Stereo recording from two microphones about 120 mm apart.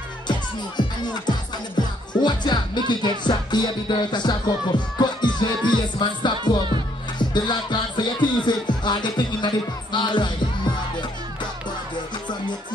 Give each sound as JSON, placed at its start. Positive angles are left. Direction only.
{"t": 0.3, "sound": "music", "side_deg": 35}
{"t": 1.8, "sound": "speech", "side_deg": 40}
{"t": 3.3, "sound": "music", "side_deg": 40}